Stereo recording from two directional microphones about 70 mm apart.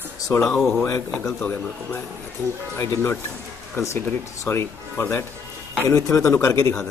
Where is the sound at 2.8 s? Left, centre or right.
Left.